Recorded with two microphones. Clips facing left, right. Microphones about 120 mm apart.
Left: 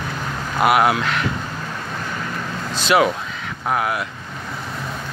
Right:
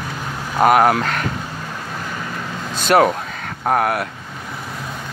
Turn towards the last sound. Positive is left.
turn(degrees=-55)  # may be behind; listen again after turning